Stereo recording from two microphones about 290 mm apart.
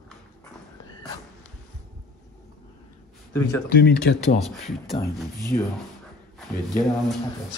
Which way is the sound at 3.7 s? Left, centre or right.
Left.